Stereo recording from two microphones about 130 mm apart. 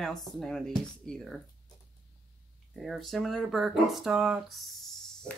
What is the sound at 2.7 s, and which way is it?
Speech, centre (ahead or behind).